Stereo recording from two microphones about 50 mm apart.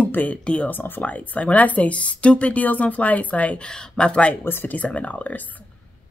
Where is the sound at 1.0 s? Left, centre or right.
Left.